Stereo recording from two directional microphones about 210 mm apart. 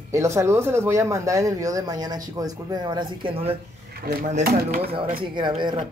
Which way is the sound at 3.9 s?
45° right (ahead or behind).